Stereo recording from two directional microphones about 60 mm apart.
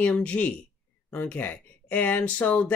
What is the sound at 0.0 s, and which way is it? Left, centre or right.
Speech, left.